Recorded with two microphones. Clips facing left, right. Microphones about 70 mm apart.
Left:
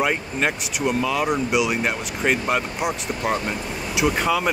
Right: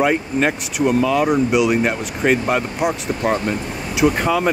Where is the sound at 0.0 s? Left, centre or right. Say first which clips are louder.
Right 5 dB; centre.